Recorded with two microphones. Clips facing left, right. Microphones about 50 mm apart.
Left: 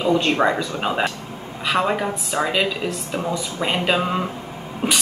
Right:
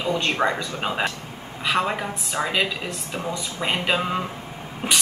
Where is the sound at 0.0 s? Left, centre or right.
Centre.